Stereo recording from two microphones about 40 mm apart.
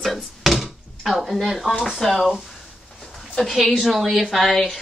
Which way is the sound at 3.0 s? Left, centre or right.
Centre.